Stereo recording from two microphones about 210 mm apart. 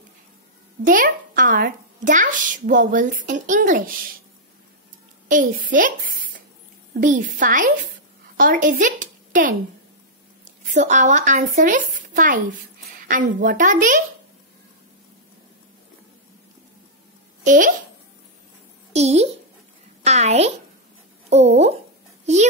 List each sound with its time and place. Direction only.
0.8 s a child's voice: 40° right (ahead or behind)
5.3 s a child's voice: 40° right (ahead or behind)
10.7 s a child's voice: 35° right (ahead or behind)
17.5 s a child's voice: 40° right (ahead or behind)
18.9 s a child's voice: 30° right (ahead or behind)